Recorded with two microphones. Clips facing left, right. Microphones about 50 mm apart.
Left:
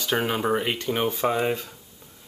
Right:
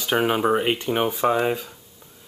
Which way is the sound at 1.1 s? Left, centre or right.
Centre.